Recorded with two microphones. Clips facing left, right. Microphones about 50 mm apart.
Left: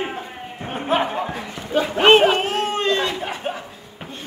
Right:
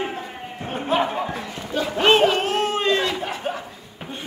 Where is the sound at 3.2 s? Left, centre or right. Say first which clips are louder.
Even; centre.